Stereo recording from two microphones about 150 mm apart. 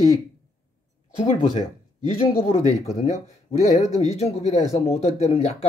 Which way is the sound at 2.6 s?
50° left (ahead or behind).